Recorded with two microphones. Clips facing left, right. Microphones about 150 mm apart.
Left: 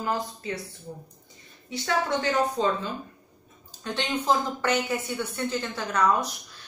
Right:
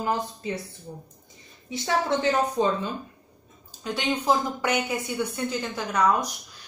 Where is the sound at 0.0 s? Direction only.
20° right (ahead or behind).